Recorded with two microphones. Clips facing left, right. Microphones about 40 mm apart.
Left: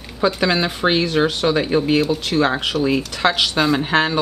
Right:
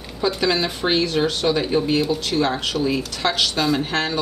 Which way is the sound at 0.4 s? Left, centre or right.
Centre.